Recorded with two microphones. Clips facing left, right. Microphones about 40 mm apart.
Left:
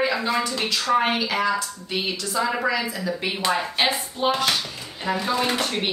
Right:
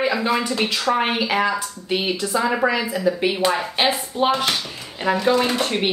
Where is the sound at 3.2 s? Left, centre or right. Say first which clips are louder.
Right 4 dB; centre.